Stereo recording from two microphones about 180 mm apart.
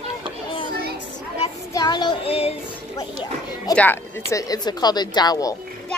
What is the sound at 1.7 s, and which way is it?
Child singing, 20° left (ahead or behind).